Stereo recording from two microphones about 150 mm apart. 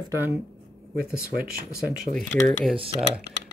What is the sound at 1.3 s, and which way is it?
Speech, 80° right.